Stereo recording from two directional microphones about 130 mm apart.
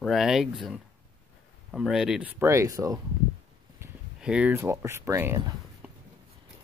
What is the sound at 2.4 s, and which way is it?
Speech, 20° right (ahead or behind).